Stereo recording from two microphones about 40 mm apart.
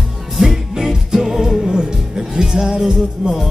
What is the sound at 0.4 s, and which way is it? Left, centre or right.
Music, centre.